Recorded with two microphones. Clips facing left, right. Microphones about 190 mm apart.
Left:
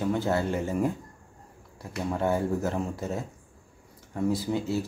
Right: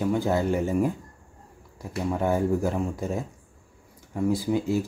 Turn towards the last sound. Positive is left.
turn(degrees=-15)  # may be behind; listen again after turning